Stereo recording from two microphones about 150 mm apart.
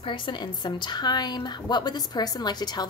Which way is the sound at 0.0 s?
35° left (ahead or behind).